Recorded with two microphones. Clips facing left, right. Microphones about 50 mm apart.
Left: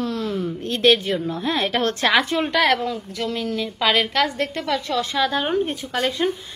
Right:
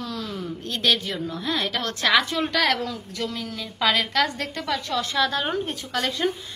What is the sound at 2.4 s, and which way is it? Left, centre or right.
A woman's voice, centre.